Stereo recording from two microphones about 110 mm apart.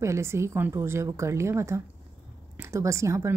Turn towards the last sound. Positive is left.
turn(degrees=-25)  # may be behind; listen again after turning